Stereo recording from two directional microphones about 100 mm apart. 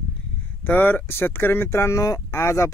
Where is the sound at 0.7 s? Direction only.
20° left (ahead or behind).